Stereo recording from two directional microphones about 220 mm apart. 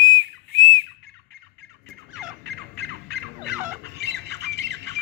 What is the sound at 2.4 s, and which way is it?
Squawk, 50° right (ahead or behind).